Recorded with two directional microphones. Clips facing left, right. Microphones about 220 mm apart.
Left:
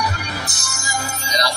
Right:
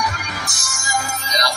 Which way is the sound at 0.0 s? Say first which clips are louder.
Left 1 dB; 35° left (ahead or behind).